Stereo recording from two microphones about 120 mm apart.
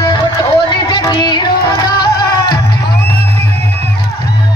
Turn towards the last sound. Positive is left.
turn(degrees=35)  # may be behind; listen again after turning